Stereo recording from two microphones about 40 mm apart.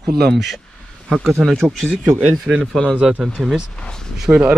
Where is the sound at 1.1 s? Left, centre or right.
Centre.